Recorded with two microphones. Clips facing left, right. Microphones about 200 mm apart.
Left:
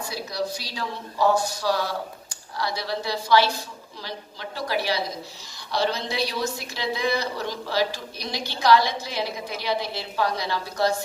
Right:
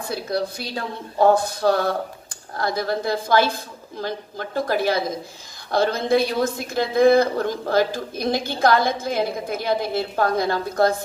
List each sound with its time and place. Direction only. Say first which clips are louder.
0.0 s a woman's voice: right 4 dB; 55° right (ahead or behind)